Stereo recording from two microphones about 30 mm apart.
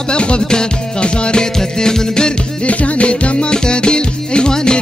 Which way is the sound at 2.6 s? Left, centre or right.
Left.